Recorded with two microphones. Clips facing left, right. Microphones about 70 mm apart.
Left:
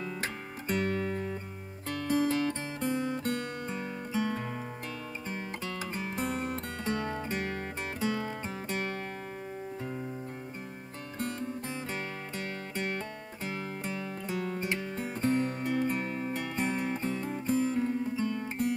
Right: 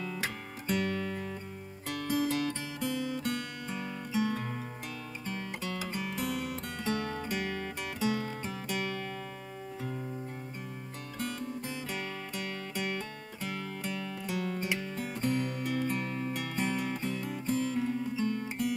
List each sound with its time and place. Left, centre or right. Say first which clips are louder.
0.0 s music: even; left
11.3 s music: left 1 dB; left